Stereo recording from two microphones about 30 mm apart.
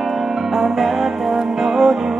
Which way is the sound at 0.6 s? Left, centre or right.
Centre.